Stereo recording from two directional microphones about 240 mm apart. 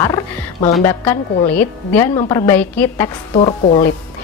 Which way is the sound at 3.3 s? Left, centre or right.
Left.